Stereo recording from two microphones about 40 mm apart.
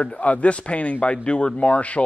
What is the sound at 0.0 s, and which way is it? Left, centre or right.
Speech, left.